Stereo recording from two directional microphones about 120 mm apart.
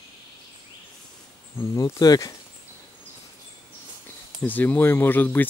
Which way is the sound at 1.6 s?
30° left (ahead or behind).